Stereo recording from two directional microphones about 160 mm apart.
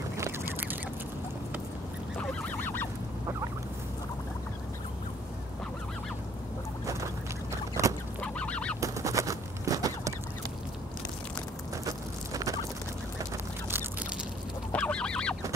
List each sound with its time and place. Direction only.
0.2 s duck: 15° right (ahead or behind)
2.1 s goose: 5° left (ahead or behind)
7.8 s rodents: 20° right (ahead or behind)
8.2 s goose: 5° left (ahead or behind)
8.8 s a sound: 20° right (ahead or behind)
11.8 s a sound: 20° right (ahead or behind)
14.7 s goose: 5° left (ahead or behind)